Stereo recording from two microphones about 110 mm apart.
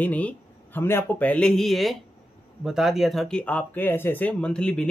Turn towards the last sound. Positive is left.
turn(degrees=10)  # may be behind; listen again after turning